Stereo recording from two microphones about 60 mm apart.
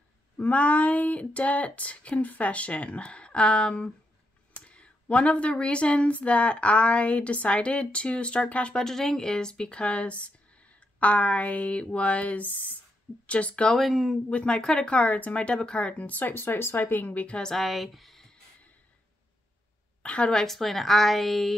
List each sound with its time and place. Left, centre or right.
0.4 s speech: left
8.8 s speech: centre
13.7 s a woman's voice: centre
14.3 s speech: centre
17.4 s a woman's voice: centre
20.0 s a woman's voice: centre
20.3 s a woman's voice: centre